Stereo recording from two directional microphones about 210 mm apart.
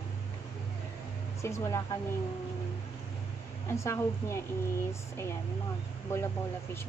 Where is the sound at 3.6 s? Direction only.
15° left (ahead or behind).